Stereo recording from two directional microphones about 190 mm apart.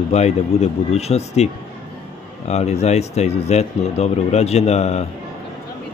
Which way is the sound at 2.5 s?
35° left (ahead or behind).